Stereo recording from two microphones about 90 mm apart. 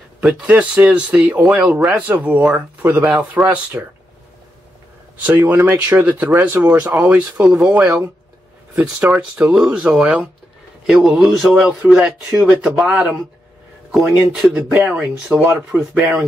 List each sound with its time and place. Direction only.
0.2 s speech: 10° right (ahead or behind)
5.1 s speech: 20° right (ahead or behind); by 11.6 s centre (ahead or behind)
11.6 s speech: 15° right (ahead or behind)
14.8 s speech: 20° right (ahead or behind)
15.7 s speech: 5° right (ahead or behind)